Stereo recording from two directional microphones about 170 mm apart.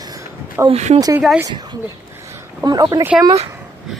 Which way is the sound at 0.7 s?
40° right (ahead or behind).